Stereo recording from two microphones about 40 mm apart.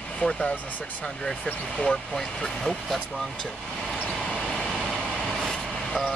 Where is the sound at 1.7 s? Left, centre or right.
Left.